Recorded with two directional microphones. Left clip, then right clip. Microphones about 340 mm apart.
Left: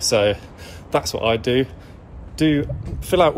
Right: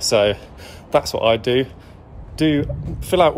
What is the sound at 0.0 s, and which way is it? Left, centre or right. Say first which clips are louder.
Speech: right 1 dB; centre.